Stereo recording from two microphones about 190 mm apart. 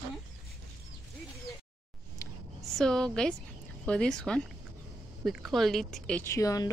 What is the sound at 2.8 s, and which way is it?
Speech, 5° left (ahead or behind).